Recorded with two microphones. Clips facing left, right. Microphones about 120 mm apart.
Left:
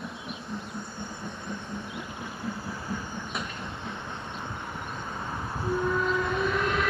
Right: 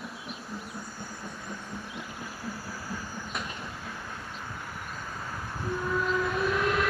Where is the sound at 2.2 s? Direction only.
25° left (ahead or behind).